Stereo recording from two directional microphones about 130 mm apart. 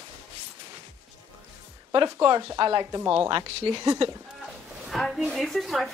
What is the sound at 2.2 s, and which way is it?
Speech, 35° right (ahead or behind).